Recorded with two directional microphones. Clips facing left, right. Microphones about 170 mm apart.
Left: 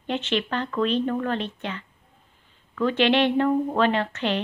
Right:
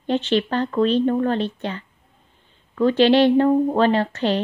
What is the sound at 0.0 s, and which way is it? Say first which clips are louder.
Speech: right 6 dB; 35° right (ahead or behind).